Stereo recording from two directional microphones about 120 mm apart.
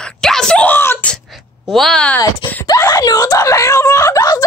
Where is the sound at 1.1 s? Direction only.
Centre (ahead or behind).